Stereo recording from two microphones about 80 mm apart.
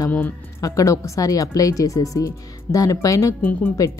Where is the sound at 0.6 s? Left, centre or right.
Left.